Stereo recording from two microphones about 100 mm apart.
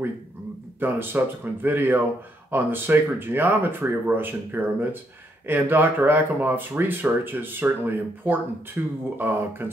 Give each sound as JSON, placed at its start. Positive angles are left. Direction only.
{"t": 0.7, "sound": "speech", "side_deg": -20}